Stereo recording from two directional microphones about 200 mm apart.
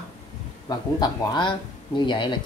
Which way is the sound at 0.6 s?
20° left (ahead or behind).